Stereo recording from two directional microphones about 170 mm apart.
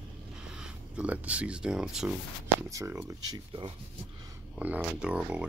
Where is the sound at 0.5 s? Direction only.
5° right (ahead or behind).